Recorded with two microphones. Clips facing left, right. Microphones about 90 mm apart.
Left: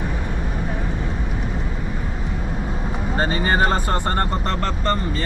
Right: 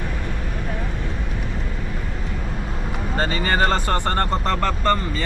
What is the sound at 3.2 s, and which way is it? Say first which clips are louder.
Speech: left 1 dB; 10° left (ahead or behind).